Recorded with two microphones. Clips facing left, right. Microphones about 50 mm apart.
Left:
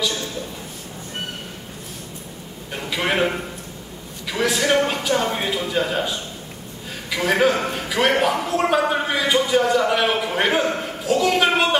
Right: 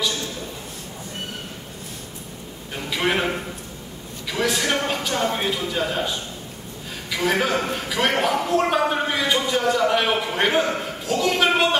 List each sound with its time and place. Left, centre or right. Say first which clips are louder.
2.9 s a man's voice: left 1 dB; centre
4.3 s a man's voice: left 3 dB; centre